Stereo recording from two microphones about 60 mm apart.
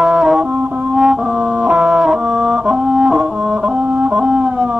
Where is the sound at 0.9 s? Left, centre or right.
Centre.